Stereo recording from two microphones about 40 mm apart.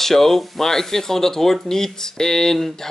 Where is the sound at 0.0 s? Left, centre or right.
Centre.